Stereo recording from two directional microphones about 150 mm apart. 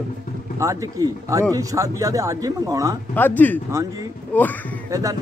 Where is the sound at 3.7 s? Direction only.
20° right (ahead or behind).